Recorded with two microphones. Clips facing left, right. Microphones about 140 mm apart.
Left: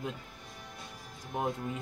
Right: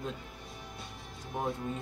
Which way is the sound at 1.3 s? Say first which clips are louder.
Left 1 dB; 20° left (ahead or behind).